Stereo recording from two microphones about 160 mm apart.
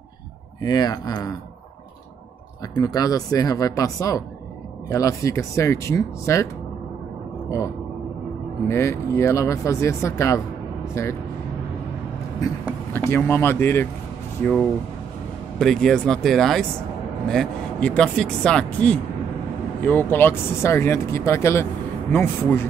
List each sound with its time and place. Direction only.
0.6 s speech: 25° left (ahead or behind)
2.7 s speech: 25° left (ahead or behind)
8.6 s speech: 15° left (ahead or behind)
12.9 s speech: 15° left (ahead or behind)